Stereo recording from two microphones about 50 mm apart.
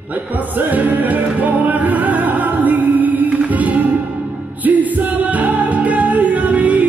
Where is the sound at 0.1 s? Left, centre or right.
Right.